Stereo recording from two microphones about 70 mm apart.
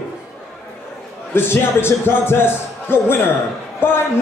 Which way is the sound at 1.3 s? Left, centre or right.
Left.